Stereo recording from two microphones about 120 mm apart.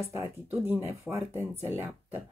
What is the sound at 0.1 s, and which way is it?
Speech, 25° right (ahead or behind).